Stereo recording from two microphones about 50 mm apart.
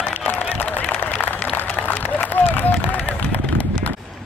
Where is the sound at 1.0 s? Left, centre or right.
Left.